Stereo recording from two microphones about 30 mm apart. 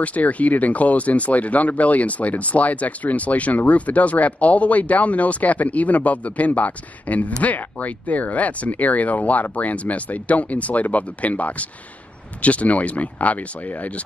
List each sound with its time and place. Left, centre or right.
0.0 s speech: left